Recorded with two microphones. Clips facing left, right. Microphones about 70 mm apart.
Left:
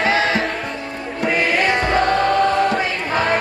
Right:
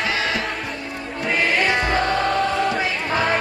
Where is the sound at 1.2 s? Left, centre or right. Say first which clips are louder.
Left 2 dB; centre.